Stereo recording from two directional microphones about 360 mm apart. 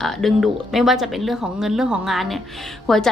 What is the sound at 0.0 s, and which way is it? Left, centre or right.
A woman's voice, centre.